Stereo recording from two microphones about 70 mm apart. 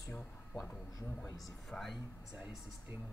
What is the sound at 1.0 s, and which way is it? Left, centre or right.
Speech, left.